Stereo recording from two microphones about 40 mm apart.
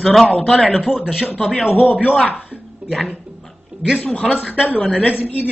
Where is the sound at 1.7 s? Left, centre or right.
Left.